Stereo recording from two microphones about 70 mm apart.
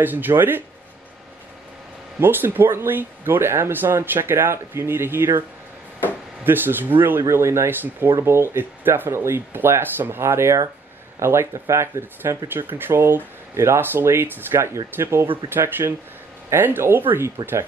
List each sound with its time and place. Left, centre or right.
0.0 s speech: right
2.1 s speech: right
6.4 s speech: right
7.2 s speech: right
12.4 s speech: right